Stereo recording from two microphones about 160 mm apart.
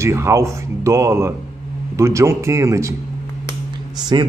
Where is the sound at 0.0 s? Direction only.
15° right (ahead or behind).